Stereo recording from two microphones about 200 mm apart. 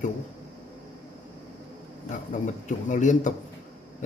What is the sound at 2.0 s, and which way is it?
A man's voice, 40° left (ahead or behind).